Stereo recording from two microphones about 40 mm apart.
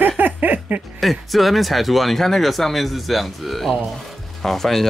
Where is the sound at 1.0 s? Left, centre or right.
Centre.